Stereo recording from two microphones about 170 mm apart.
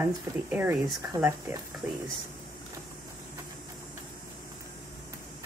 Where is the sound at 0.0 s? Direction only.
10° right (ahead or behind).